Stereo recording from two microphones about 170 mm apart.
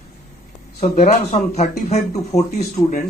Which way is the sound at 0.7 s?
40° left (ahead or behind).